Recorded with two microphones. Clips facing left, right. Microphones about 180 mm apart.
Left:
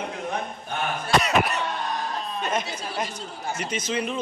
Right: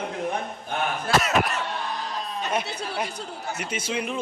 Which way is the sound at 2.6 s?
65° right (ahead or behind).